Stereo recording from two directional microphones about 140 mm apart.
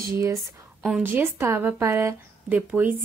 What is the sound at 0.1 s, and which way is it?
A woman's voice, 20° right (ahead or behind).